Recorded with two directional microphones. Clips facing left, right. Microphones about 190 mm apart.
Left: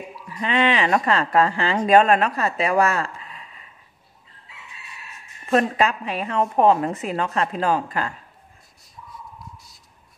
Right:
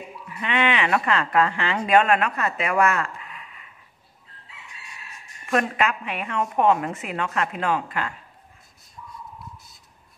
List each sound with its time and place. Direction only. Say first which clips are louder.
0.3 s speech: left 3 dB; 35° left (ahead or behind)
5.5 s speech: left 3 dB; 35° left (ahead or behind)